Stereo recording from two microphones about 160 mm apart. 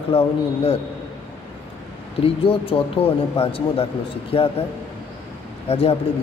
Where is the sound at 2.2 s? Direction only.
35° left (ahead or behind).